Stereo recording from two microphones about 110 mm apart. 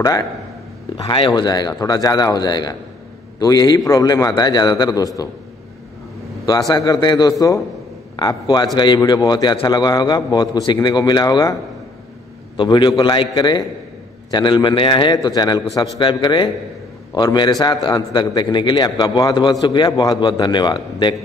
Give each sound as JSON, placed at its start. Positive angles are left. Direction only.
{"t": 0.9, "sound": "a man's voice", "side_deg": 45}
{"t": 6.4, "sound": "a man's voice", "side_deg": 35}
{"t": 8.2, "sound": "a man's voice", "side_deg": 40}
{"t": 12.5, "sound": "a man's voice", "side_deg": 45}